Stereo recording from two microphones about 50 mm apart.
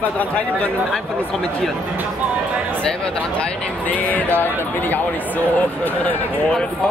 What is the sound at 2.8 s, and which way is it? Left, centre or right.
Speech, centre.